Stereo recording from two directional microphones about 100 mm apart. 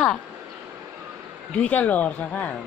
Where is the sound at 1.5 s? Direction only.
15° left (ahead or behind).